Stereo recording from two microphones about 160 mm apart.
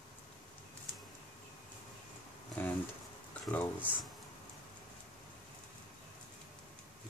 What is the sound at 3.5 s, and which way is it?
Speech, 10° left (ahead or behind).